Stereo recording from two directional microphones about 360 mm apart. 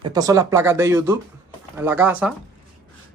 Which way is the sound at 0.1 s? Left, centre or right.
Centre.